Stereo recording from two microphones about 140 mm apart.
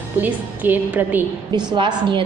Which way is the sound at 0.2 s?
10° right (ahead or behind).